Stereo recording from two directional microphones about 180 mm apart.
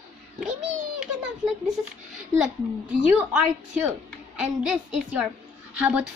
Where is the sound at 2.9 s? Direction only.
5° right (ahead or behind).